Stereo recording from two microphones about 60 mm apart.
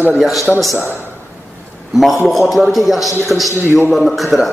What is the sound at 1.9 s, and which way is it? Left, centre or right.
A man's voice, centre.